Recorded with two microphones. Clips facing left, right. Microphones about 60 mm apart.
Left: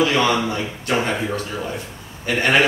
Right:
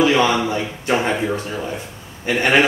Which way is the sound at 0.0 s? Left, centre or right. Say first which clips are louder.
Right 2 dB; centre.